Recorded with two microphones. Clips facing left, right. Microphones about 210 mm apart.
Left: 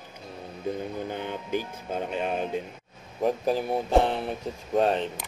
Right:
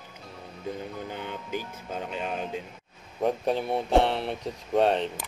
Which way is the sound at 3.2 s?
Centre (ahead or behind).